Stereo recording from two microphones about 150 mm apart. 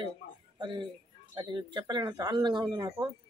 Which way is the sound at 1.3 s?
30° right (ahead or behind).